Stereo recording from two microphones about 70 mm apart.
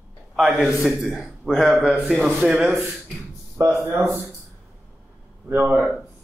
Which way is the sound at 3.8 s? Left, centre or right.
Right.